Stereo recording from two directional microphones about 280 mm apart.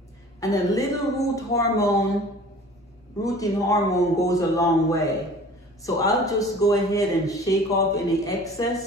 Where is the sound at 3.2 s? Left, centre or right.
Centre.